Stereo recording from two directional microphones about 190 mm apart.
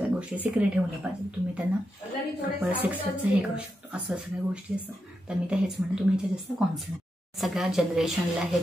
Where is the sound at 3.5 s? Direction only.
5° right (ahead or behind).